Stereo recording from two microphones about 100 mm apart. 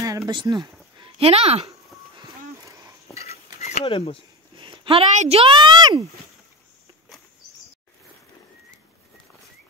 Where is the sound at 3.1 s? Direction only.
90° left.